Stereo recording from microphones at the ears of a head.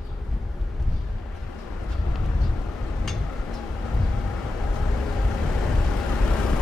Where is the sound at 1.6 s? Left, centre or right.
Left.